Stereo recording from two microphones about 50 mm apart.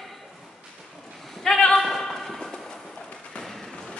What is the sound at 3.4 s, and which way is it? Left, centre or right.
Fireworks, centre.